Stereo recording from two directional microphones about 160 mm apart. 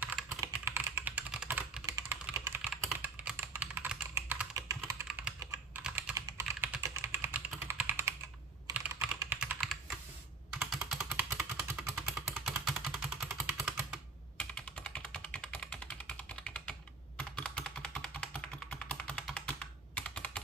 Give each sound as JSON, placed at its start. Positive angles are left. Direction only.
{"t": 0.4, "sound": "typing", "side_deg": -15}
{"t": 1.9, "sound": "typing", "side_deg": -20}
{"t": 2.7, "sound": "computer keyboard", "side_deg": -5}
{"t": 5.0, "sound": "typing", "side_deg": -5}
{"t": 5.9, "sound": "computer keyboard", "side_deg": -5}
{"t": 6.1, "sound": "typing", "side_deg": -20}
{"t": 8.7, "sound": "computer keyboard", "side_deg": -10}
{"t": 11.1, "sound": "vehicle", "side_deg": -10}
{"t": 13.7, "sound": "typing", "side_deg": -5}
{"t": 14.3, "sound": "typing", "side_deg": 5}